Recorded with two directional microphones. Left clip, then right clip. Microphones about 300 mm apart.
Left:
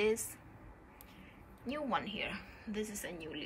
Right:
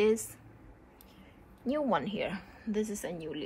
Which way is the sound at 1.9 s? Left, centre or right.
Right.